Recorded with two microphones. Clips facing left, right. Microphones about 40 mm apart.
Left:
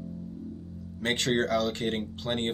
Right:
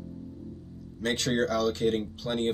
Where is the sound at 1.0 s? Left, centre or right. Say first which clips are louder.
Even; left.